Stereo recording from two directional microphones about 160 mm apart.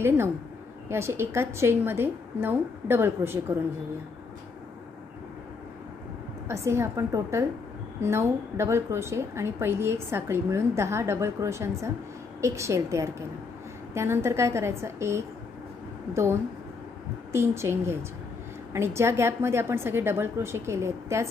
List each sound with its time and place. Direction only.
0.8 s a woman's voice: 15° right (ahead or behind)
6.4 s a woman's voice: 15° right (ahead or behind)